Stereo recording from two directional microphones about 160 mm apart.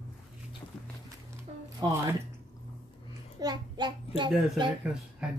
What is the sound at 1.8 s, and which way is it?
Speech, 25° right (ahead or behind).